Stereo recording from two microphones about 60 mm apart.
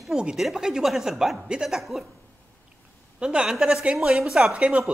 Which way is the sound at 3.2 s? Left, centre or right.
Centre.